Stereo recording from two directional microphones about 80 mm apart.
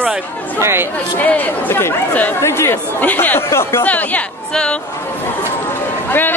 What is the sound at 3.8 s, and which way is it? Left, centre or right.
Speech, left.